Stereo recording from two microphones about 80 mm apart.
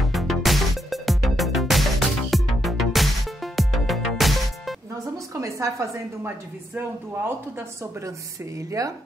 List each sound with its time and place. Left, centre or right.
0.0 s music: centre
4.9 s a sound: right
8.5 s speech: right